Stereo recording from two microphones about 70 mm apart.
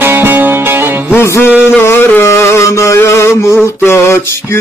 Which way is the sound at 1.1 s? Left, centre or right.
Left.